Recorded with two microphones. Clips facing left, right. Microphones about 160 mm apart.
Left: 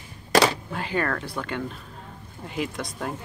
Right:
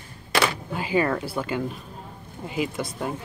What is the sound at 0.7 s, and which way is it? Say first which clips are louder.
Speech: right 8 dB; 5° right (ahead or behind).